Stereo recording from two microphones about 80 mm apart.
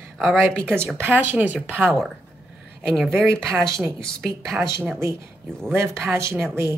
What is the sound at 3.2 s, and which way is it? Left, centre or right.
Speech, right.